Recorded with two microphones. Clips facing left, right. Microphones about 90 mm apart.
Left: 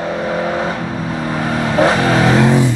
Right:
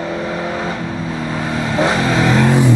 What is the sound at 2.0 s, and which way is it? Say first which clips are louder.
Vehicle: left 2 dB; 40° left (ahead or behind).